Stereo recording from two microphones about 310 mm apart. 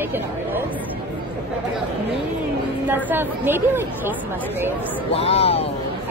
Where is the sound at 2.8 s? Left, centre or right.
Centre.